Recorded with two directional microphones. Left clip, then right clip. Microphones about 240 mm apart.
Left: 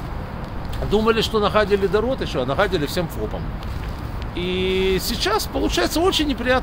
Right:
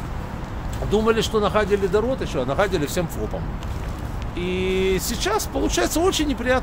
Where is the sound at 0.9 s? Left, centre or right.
Centre.